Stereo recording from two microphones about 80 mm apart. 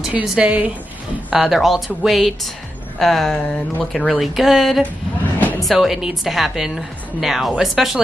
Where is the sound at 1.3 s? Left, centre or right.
Centre.